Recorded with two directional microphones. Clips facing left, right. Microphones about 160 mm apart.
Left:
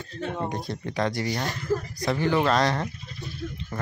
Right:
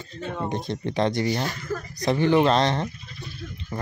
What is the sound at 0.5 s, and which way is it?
Speech, 25° right (ahead or behind).